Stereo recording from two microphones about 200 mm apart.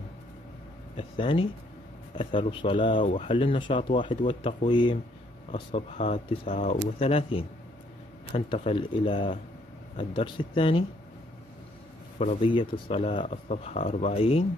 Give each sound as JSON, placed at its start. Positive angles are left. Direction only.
{"t": 0.9, "sound": "speech", "side_deg": 25}
{"t": 12.2, "sound": "speech", "side_deg": 30}